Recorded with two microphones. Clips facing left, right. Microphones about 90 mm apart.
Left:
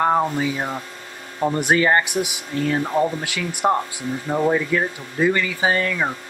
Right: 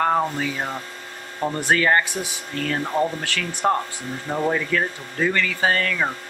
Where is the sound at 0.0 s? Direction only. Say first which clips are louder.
Left 2 dB; 10° left (ahead or behind).